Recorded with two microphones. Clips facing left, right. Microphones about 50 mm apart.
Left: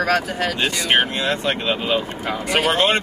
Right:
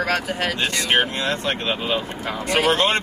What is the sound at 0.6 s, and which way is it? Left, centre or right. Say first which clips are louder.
Speech: left 2 dB; centre.